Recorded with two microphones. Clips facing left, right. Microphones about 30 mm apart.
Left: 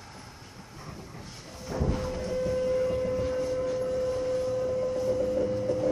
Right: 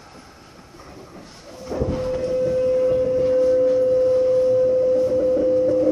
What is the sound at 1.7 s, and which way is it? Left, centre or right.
Train, right.